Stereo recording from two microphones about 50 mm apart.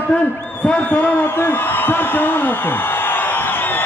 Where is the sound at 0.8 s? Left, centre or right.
Left.